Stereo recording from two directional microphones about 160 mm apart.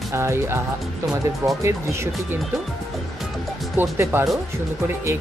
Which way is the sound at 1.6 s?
20° right (ahead or behind).